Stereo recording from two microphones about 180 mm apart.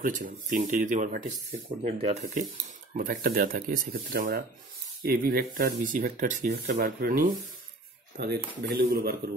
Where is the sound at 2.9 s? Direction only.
50° right (ahead or behind).